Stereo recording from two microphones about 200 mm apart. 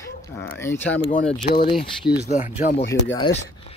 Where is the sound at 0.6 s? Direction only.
10° left (ahead or behind).